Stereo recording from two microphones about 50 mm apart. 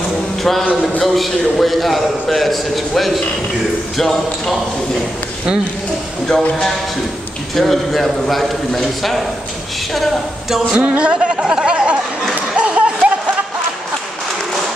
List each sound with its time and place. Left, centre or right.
0.4 s a man's voice: centre
7.5 s a man's voice: centre
10.7 s speech: right
12.5 s a sound: right